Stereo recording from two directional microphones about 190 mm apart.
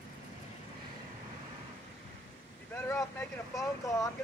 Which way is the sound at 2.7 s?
10° left (ahead or behind).